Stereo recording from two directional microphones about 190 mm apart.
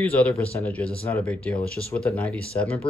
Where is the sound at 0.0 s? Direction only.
5° left (ahead or behind).